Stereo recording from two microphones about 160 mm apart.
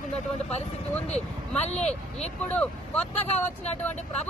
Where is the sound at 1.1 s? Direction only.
45° left (ahead or behind).